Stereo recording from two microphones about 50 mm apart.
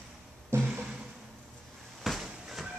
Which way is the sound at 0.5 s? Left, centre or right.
Right.